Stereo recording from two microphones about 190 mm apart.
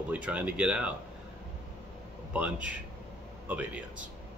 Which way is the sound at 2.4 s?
5° right (ahead or behind).